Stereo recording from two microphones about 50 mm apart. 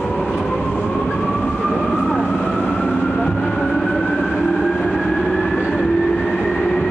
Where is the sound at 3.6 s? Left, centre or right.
Centre.